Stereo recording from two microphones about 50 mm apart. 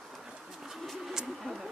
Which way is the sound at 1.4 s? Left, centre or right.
Centre.